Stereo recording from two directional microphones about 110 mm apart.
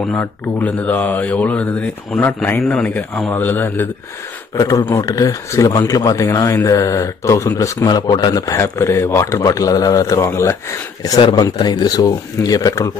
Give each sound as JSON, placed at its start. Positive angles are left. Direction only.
{"t": 0.1, "sound": "speech", "side_deg": 15}
{"t": 4.6, "sound": "speech", "side_deg": 30}
{"t": 11.1, "sound": "speech", "side_deg": 50}